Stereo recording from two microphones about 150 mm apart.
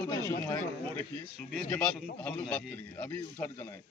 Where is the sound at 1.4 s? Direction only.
5° left (ahead or behind).